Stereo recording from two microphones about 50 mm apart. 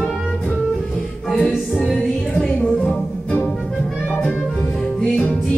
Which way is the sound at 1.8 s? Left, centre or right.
Centre.